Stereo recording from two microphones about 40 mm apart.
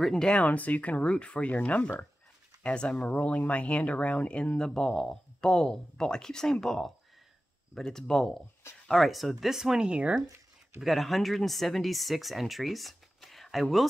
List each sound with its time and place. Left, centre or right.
0.0 s speech: centre
0.4 s speech: left
2.6 s speech: left
3.1 s speech: left
4.6 s speech: centre
9.3 s speech: centre
9.8 s speech: right
10.8 s speech: centre